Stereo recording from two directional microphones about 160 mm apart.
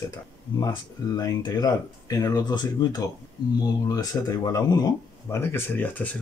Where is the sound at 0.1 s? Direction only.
25° left (ahead or behind).